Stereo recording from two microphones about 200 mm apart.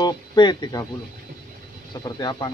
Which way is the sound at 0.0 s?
20° left (ahead or behind).